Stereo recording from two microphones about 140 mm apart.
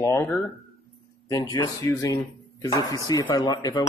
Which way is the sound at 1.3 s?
25° left (ahead or behind).